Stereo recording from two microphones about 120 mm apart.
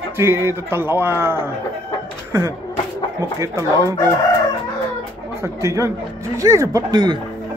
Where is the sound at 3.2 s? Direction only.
25° right (ahead or behind).